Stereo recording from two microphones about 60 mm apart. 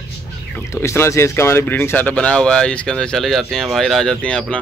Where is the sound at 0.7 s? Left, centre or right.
Left.